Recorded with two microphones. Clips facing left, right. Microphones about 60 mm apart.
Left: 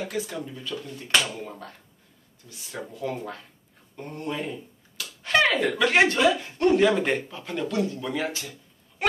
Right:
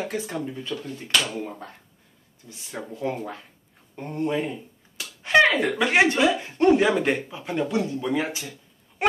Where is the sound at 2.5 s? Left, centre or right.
Right.